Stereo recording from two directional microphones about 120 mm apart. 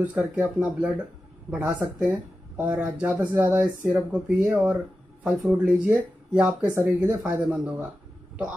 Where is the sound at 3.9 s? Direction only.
5° right (ahead or behind).